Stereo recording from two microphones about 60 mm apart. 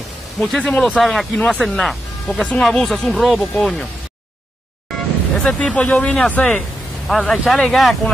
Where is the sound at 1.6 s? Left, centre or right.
Centre.